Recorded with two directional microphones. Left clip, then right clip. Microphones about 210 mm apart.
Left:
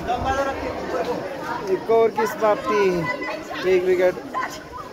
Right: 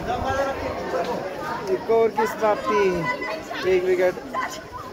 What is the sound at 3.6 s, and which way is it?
Speech, 10° left (ahead or behind).